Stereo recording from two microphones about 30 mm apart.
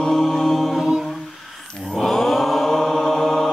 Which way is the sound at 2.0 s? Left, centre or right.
Centre.